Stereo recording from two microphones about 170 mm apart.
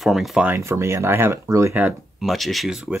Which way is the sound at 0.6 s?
15° right (ahead or behind).